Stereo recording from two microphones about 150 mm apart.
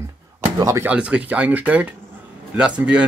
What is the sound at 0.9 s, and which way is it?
Speech, 10° right (ahead or behind).